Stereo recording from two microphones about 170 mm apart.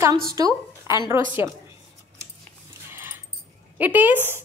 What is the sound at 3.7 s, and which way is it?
Speech, 10° right (ahead or behind).